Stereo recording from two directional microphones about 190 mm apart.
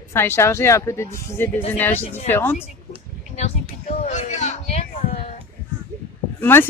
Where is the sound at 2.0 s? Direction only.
35° left (ahead or behind).